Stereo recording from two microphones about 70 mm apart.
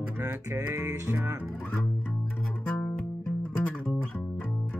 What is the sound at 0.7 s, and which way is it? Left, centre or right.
Speech, right.